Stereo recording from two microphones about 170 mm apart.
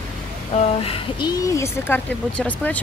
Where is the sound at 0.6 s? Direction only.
35° left (ahead or behind); by 2.8 s 10° left (ahead or behind).